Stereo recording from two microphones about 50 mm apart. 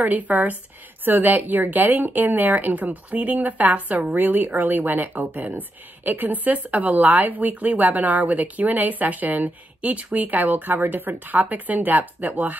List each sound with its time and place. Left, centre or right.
0.0 s speech: right